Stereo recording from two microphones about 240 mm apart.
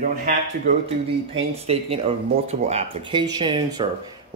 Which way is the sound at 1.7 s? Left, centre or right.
Right.